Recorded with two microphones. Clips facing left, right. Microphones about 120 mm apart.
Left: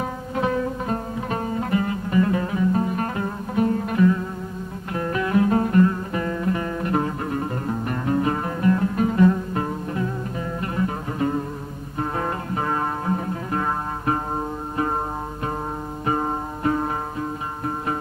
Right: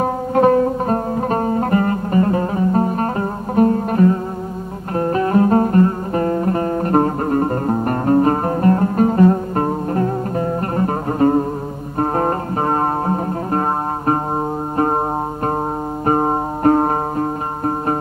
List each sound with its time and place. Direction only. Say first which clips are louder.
0.0 s music: right 10 dB; 45° right (ahead or behind)
16.1 s music: right 7 dB; 45° right (ahead or behind)